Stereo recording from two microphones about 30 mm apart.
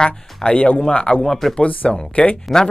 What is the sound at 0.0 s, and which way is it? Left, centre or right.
Speech, left.